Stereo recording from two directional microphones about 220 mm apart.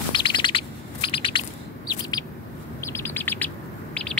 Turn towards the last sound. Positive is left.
turn(degrees=5)  # may be behind; listen again after turning